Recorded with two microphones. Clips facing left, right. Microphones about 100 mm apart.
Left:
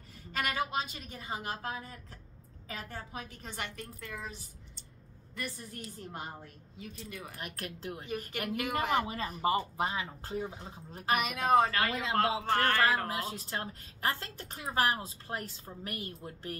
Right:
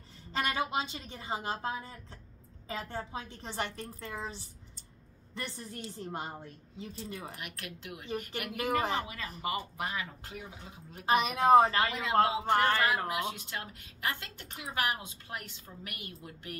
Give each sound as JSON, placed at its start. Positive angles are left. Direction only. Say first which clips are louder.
{"t": 0.3, "sound": "a woman's voice", "louder": "right 1 dB", "side_deg": -25}
{"t": 7.3, "sound": "a woman's voice", "louder": "left 2 dB", "side_deg": 35}
{"t": 8.5, "sound": "speech", "louder": "right 3 dB", "side_deg": -30}
{"t": 9.0, "sound": "a woman's voice", "louder": "left 6 dB", "side_deg": 35}
{"t": 11.1, "sound": "a woman's voice", "louder": "right 4 dB", "side_deg": -25}
{"t": 13.1, "sound": "a woman's voice", "louder": "right 1 dB", "side_deg": 35}